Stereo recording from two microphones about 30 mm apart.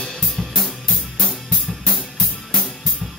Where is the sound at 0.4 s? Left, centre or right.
Centre.